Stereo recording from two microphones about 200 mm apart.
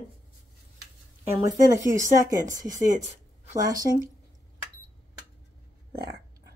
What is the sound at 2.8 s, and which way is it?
Speech, 40° right (ahead or behind).